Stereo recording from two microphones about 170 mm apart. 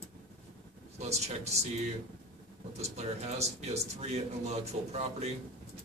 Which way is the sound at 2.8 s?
40° right (ahead or behind).